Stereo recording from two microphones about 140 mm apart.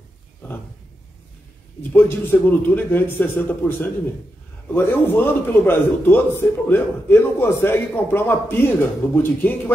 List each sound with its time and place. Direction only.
1.8 s a man's voice: 15° left (ahead or behind)